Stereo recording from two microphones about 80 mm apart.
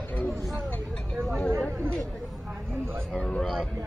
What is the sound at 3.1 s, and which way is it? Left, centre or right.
Speech, centre.